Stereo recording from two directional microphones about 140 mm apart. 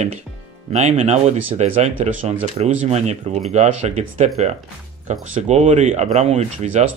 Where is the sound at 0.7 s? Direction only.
55° right (ahead or behind).